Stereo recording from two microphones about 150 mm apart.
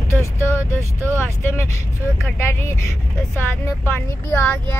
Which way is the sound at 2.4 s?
15° left (ahead or behind).